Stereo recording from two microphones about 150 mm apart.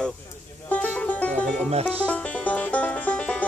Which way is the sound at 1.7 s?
45° right (ahead or behind).